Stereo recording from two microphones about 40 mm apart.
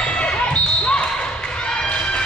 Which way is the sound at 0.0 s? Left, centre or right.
Left.